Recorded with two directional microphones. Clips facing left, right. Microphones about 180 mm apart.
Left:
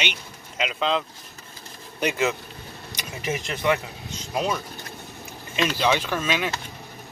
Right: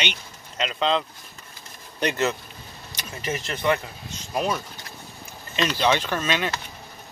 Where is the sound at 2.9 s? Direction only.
15° left (ahead or behind).